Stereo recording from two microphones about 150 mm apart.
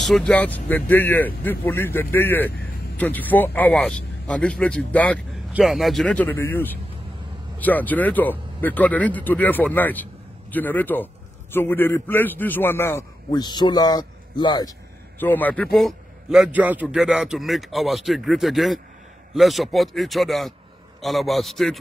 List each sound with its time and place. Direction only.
0.0 s speech: 5° left (ahead or behind)
5.5 s speech: 5° right (ahead or behind); by 13.0 s 15° left (ahead or behind)
13.3 s a man's voice: 30° left (ahead or behind)
15.1 s a man's voice: 10° left (ahead or behind)